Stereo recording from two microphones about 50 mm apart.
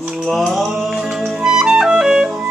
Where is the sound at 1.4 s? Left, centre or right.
Centre.